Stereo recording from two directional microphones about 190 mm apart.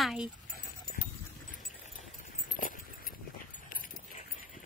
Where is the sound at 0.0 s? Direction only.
Centre (ahead or behind).